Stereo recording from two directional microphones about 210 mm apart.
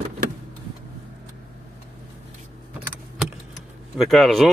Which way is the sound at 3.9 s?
Centre (ahead or behind).